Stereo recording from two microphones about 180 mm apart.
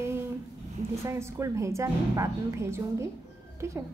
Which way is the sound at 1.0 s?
15° right (ahead or behind).